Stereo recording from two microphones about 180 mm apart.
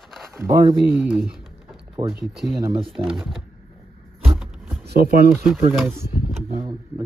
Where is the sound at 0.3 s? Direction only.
15° right (ahead or behind).